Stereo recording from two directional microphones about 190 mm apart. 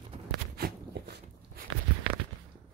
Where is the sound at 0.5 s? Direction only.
60° right (ahead or behind).